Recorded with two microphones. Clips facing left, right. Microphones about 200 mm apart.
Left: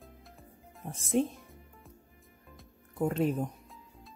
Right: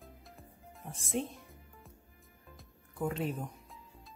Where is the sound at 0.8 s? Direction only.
45° left (ahead or behind).